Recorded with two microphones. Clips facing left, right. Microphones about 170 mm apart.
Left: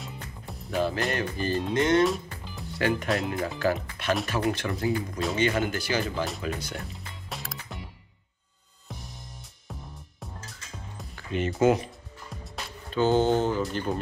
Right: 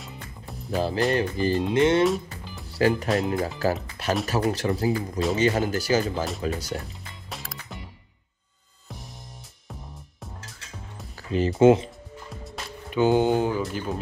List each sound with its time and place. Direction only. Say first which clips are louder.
0.0 s music: even; centre (ahead or behind)
0.7 s speech: right 3 dB; 35° right (ahead or behind)
2.0 s music: right 3 dB; centre (ahead or behind)
2.7 s speech: right 4 dB; 35° right (ahead or behind)
7.2 s music: even; centre (ahead or behind)
8.8 s music: right 1 dB; centre (ahead or behind)
11.1 s speech: right 5 dB; 35° right (ahead or behind)
12.9 s speech: right 2 dB; 15° right (ahead or behind)